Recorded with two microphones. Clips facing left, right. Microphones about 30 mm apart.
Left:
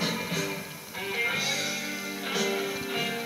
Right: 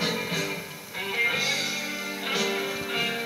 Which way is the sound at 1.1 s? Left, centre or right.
Centre.